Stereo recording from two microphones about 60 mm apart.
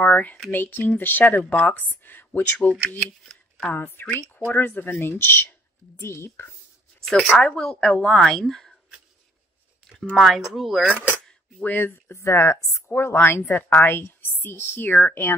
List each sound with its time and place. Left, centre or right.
0.0 s speech: left
3.0 s speech: centre
3.7 s speech: left
7.1 s a woman's voice: centre
10.1 s speech: centre
11.6 s speech: left
12.2 s speech: left
12.9 s speech: left
13.4 s speech: left
13.7 s speech: left